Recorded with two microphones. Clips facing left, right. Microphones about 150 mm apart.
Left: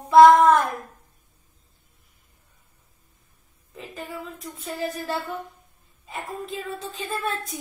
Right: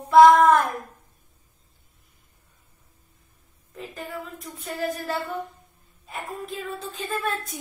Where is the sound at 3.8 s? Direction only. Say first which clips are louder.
Right 1 dB; centre (ahead or behind).